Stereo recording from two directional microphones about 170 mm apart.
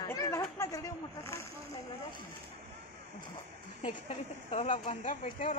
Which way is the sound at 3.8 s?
40° left (ahead or behind).